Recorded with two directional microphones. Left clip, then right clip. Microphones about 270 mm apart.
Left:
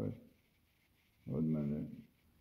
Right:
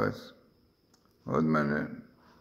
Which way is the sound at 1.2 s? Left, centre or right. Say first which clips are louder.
Right 12 dB; centre.